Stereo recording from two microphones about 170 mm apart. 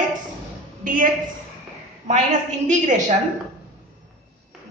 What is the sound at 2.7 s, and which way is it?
Speech, 45° right (ahead or behind).